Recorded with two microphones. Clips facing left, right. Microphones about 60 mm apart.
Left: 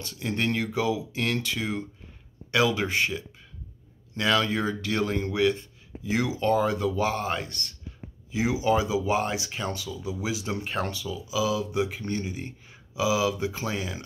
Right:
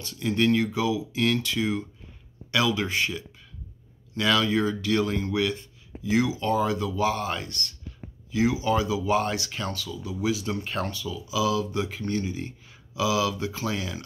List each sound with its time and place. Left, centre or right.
0.4 s speech: left
4.2 s speech: left
11.4 s speech: centre
12.0 s speech: left